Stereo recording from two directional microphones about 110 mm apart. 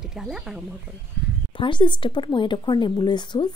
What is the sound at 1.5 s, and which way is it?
Speech, 50° left (ahead or behind).